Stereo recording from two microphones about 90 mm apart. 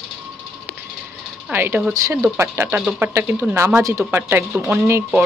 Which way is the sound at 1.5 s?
25° right (ahead or behind).